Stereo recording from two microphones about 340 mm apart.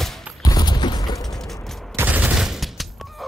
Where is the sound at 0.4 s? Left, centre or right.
Centre.